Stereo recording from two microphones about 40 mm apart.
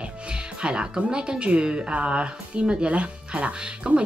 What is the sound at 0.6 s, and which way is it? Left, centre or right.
Speech, right.